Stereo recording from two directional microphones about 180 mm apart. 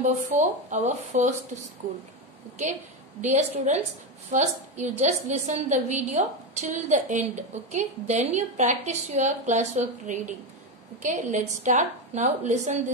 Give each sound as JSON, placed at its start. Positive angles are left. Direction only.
{"t": 0.4, "sound": "a woman's voice", "side_deg": -40}
{"t": 2.6, "sound": "a woman's voice", "side_deg": -40}